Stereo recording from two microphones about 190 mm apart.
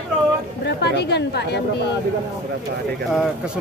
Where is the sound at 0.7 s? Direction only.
60° left (ahead or behind).